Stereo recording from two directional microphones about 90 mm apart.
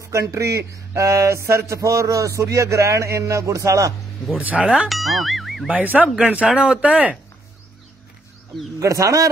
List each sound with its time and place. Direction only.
0.1 s speech: 35° right (ahead or behind)
4.4 s speech: 15° right (ahead or behind)
6.1 s speech: 15° right (ahead or behind)
8.7 s speech: 40° right (ahead or behind)